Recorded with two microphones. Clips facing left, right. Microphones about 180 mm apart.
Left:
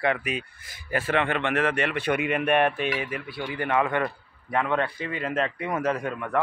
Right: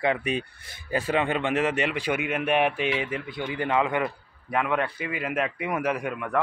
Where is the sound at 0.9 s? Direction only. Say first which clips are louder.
Even; 15° right (ahead or behind).